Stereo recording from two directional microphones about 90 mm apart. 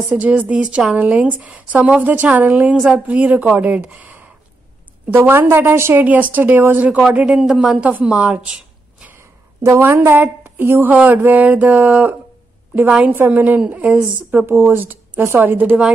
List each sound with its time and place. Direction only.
0.1 s a woman's voice: 15° right (ahead or behind)
7.2 s a woman's voice: 10° right (ahead or behind)
9.1 s a woman's voice: 30° right (ahead or behind)